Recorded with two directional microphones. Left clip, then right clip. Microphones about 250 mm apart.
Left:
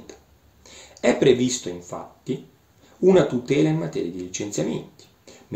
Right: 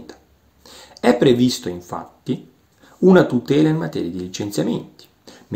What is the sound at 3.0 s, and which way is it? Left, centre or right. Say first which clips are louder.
Speech: right 3 dB; right.